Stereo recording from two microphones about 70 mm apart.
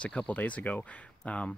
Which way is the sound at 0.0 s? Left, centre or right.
Centre.